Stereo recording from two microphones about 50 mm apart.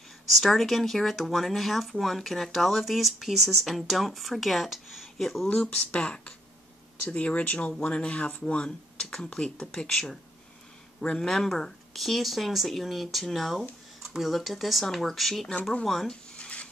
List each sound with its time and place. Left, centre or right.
0.3 s speech: centre
5.9 s speech: left
11.0 s speech: left
11.2 s speech: centre
16.3 s stir: left